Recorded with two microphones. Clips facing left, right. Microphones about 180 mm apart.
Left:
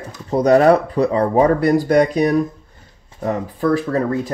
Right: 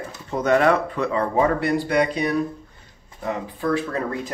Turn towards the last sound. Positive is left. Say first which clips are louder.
# left 6 dB
turn(degrees=40)  # may be behind; listen again after turning